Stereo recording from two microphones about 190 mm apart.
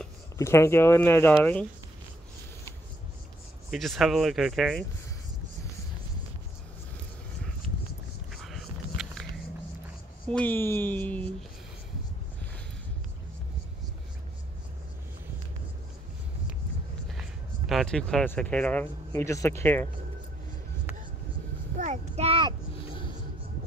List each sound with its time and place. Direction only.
0.4 s speech: 15° left (ahead or behind)
3.7 s speech: centre (ahead or behind)
8.3 s a sound: centre (ahead or behind)
10.3 s speech: 10° left (ahead or behind)
17.1 s speech: centre (ahead or behind)
21.7 s a child's voice: 40° right (ahead or behind)
22.8 s a sound: 25° left (ahead or behind)